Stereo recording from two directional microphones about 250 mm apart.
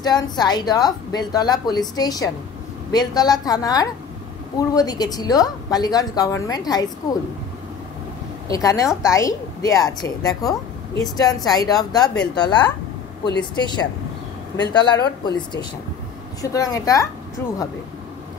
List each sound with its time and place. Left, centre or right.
0.0 s a woman's voice: centre
8.5 s a woman's voice: centre